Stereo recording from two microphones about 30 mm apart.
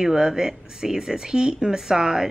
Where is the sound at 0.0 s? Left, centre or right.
Right.